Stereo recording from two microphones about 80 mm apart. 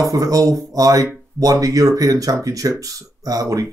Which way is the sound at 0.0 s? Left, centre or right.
Right.